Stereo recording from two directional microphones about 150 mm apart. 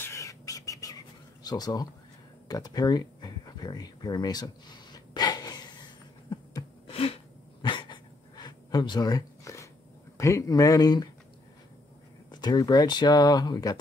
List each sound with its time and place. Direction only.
0.0 s bird: 20° left (ahead or behind)
1.4 s speech: 25° left (ahead or behind)
2.4 s a sound: 25° left (ahead or behind)
10.1 s speech: 20° left (ahead or behind)
12.3 s speech: 25° left (ahead or behind)